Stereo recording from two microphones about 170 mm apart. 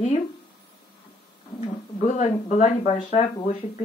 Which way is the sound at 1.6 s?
40° left (ahead or behind).